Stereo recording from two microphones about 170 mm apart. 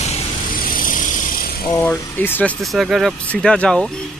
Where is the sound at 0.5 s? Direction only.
55° left (ahead or behind).